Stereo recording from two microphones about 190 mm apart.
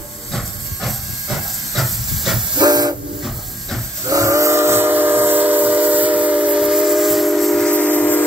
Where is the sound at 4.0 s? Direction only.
15° right (ahead or behind).